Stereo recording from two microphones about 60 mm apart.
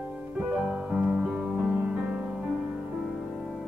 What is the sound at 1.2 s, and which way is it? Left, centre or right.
Music, centre.